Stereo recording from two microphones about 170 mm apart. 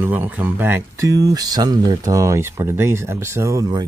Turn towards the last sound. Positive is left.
turn(degrees=-20)  # may be behind; listen again after turning